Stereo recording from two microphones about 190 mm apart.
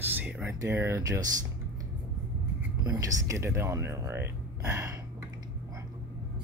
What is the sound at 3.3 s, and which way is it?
Speech, 15° right (ahead or behind).